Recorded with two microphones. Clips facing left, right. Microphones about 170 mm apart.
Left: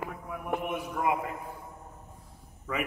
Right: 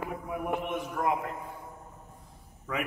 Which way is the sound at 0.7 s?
10° left (ahead or behind).